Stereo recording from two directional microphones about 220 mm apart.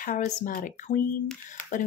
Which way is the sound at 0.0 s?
35° left (ahead or behind).